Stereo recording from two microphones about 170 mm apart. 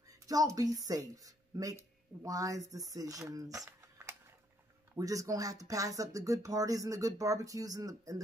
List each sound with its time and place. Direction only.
0.3 s speech: 20° right (ahead or behind)
4.9 s speech: 20° right (ahead or behind)